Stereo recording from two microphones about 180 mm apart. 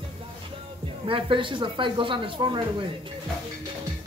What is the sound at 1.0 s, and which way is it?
Speech, 30° right (ahead or behind).